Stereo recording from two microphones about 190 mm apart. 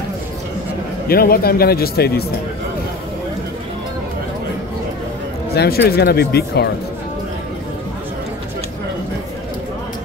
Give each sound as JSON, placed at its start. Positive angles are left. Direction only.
{"t": 1.0, "sound": "speech", "side_deg": 50}
{"t": 5.5, "sound": "speech", "side_deg": 60}